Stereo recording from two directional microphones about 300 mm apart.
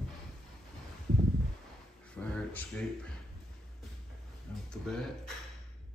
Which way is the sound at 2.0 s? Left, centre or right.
Centre.